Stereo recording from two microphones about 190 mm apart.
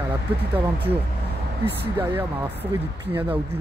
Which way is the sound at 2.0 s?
10° right (ahead or behind).